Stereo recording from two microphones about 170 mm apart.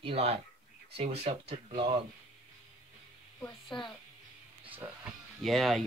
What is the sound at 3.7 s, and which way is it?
Speech, 30° left (ahead or behind).